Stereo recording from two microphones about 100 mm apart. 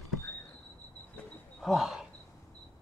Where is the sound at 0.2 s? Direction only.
30° left (ahead or behind).